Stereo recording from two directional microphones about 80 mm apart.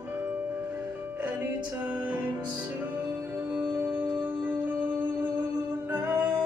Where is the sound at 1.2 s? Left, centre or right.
Centre.